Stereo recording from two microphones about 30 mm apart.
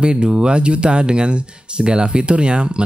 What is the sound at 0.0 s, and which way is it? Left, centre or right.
Speech, right.